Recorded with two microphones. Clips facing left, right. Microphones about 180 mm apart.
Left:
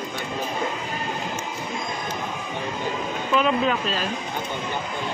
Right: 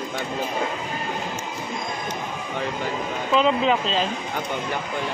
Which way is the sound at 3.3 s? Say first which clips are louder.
Right 2 dB; 20° right (ahead or behind).